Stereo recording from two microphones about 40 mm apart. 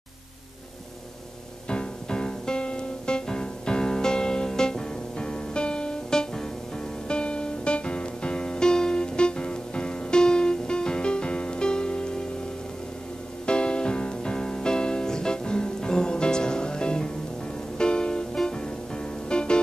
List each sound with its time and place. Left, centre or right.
1.7 s music: left
13.5 s music: left